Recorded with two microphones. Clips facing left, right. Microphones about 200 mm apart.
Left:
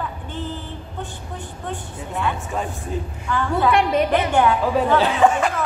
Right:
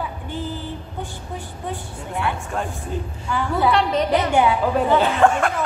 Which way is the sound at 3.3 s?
10° right (ahead or behind).